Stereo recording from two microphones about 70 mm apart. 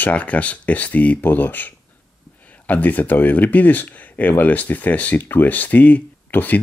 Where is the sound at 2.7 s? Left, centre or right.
Left.